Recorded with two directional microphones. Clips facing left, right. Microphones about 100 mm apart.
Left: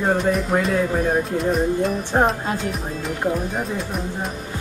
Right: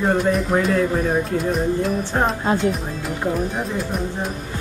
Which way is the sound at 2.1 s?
20° left (ahead or behind).